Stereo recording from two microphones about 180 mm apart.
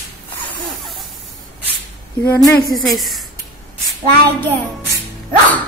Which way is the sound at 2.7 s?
Centre (ahead or behind).